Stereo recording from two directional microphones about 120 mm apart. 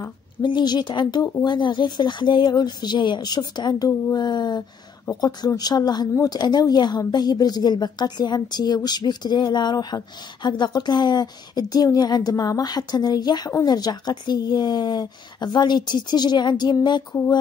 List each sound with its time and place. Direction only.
0.4 s a woman's voice: 40° left (ahead or behind)